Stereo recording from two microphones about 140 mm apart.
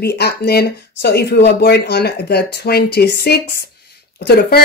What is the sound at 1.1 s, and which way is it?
Speech, 90° left.